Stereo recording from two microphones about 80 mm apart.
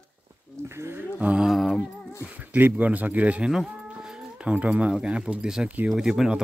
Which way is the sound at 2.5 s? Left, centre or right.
Centre.